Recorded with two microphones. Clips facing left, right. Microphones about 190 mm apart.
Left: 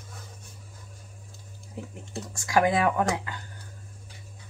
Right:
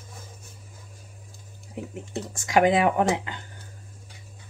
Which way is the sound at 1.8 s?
20° right (ahead or behind).